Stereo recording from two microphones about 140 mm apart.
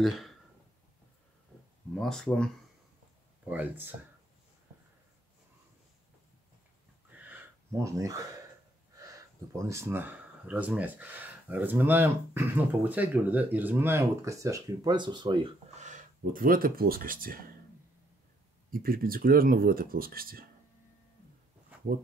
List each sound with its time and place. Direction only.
0.0 s speech: centre (ahead or behind)
2.0 s speech: 5° left (ahead or behind)
3.4 s speech: 10° right (ahead or behind)
7.2 s a sound: 10° right (ahead or behind)
8.9 s speech: 25° right (ahead or behind)
15.8 s speech: 70° right (ahead or behind); by 17.5 s 90° right
18.7 s speech: 90° right